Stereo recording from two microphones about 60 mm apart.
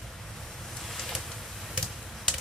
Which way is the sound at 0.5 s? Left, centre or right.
Centre.